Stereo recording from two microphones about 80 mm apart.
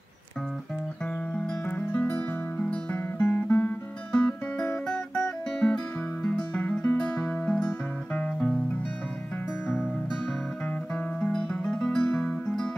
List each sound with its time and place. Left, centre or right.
1.7 s music: left
11.1 s music: centre